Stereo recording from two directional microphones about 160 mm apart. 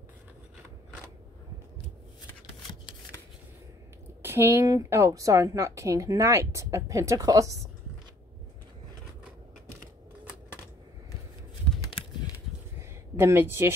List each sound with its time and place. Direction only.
4.2 s speech: 15° right (ahead or behind)
12.0 s a sound: 35° left (ahead or behind)
13.1 s speech: 15° right (ahead or behind)